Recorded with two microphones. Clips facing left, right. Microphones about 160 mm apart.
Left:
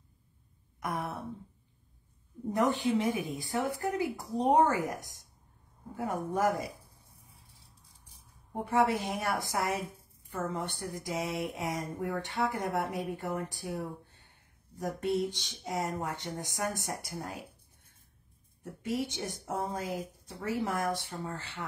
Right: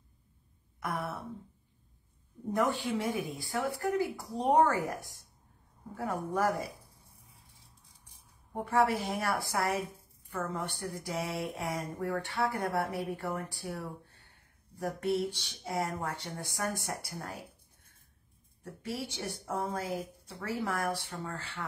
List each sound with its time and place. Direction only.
0.7 s speech: 20° left (ahead or behind)
2.5 s speech: 20° left (ahead or behind)
8.6 s speech: 20° left (ahead or behind)
11.0 s speech: 20° left (ahead or behind)
18.6 s speech: 20° left (ahead or behind)